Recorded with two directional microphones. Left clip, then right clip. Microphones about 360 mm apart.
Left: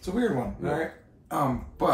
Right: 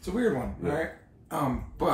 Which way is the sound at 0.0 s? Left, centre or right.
Centre.